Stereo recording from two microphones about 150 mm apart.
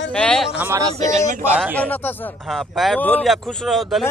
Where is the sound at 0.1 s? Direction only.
5° left (ahead or behind).